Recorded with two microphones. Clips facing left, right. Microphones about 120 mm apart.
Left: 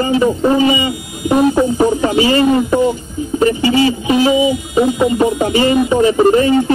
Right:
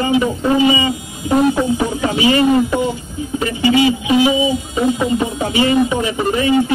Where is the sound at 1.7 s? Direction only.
40° left (ahead or behind).